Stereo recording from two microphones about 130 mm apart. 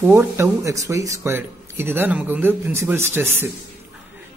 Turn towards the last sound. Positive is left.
turn(degrees=-20)  # may be behind; listen again after turning